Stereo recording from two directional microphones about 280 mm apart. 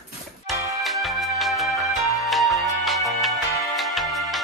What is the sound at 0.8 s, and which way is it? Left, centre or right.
Music, centre.